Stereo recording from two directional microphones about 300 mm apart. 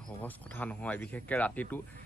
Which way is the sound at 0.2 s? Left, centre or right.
Centre.